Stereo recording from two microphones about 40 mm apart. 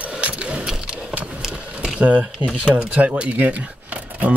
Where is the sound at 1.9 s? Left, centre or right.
Right.